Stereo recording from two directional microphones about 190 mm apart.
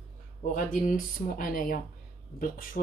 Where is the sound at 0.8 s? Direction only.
45° left (ahead or behind).